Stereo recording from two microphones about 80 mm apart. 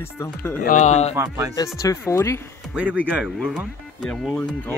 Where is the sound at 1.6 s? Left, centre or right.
Left.